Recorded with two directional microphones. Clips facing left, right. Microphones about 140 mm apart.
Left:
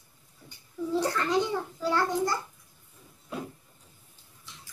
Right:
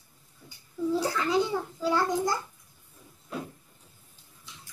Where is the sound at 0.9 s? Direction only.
5° right (ahead or behind).